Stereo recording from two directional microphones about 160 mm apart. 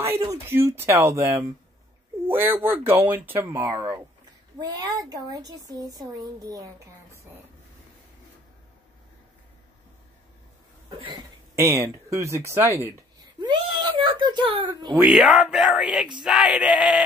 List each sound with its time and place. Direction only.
0.3 s a woman's voice: 15° right (ahead or behind)
10.9 s a sound: 35° right (ahead or behind)
11.5 s speech: 15° right (ahead or behind)
15.0 s speech: centre (ahead or behind)